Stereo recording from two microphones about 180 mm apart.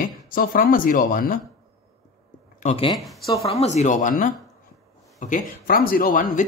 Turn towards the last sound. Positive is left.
turn(degrees=45)  # may be behind; listen again after turning